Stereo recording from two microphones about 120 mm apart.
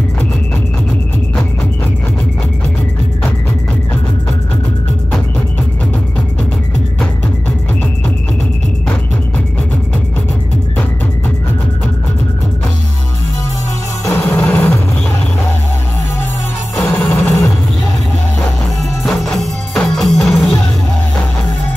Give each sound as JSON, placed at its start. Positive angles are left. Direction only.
{"t": 14.0, "sound": "music", "side_deg": 10}
{"t": 16.8, "sound": "music", "side_deg": 15}
{"t": 19.0, "sound": "music", "side_deg": 0}